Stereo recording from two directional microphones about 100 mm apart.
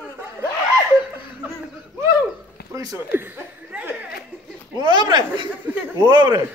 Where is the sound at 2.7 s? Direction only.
30° right (ahead or behind).